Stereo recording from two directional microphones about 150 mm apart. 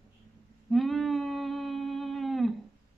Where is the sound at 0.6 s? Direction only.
Centre (ahead or behind).